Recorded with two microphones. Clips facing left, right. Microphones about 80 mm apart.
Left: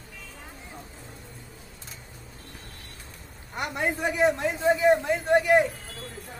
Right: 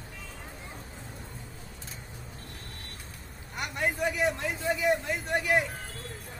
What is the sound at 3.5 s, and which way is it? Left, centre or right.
A man's voice, left.